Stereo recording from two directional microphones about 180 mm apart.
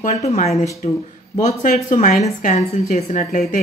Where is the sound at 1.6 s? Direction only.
45° left (ahead or behind).